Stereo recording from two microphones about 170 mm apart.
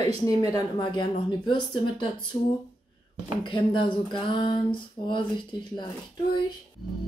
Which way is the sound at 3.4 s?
30° left (ahead or behind).